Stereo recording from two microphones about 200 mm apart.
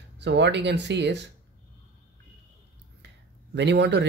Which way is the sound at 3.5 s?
60° right (ahead or behind).